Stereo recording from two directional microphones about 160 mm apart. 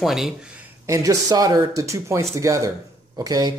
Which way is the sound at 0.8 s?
20° right (ahead or behind).